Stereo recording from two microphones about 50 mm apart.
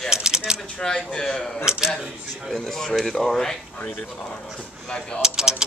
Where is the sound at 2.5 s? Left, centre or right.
Centre.